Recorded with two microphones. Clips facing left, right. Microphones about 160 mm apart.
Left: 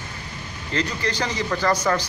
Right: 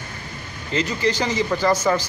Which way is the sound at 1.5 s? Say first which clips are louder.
Right 1 dB; 5° right (ahead or behind).